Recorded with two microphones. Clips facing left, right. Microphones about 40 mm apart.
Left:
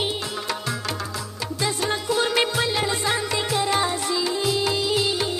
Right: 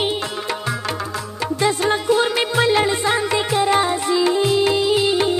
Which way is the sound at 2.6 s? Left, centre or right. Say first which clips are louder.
Right 7 dB; right.